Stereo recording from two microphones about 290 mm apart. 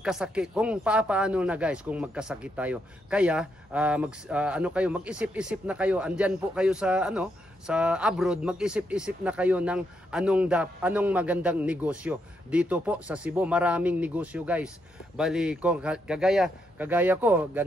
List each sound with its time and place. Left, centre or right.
0.0 s speech: centre